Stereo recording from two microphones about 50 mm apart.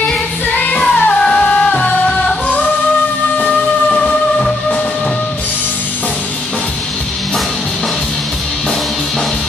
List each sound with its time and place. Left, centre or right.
0.6 s music: left
3.9 s music: centre